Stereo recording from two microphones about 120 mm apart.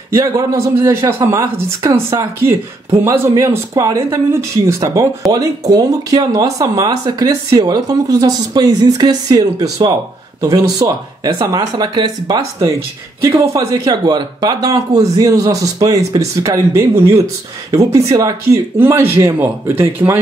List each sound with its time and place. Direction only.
0.1 s speech: 25° right (ahead or behind)
18.8 s speech: 15° right (ahead or behind)